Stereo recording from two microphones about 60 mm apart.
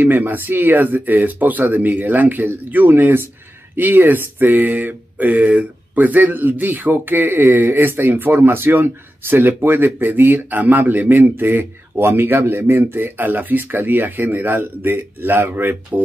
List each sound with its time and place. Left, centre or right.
0.0 s speech: right